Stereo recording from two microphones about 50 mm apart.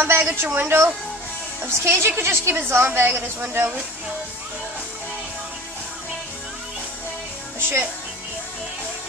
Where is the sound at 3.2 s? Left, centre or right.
Right.